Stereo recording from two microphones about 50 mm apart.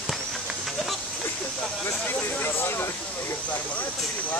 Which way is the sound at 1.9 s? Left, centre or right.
Left.